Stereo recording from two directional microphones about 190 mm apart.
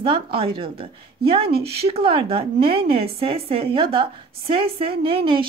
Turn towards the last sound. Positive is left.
turn(degrees=-25)  # may be behind; listen again after turning